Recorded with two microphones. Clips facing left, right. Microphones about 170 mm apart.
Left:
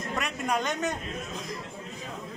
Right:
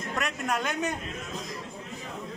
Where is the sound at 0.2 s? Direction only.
Centre (ahead or behind).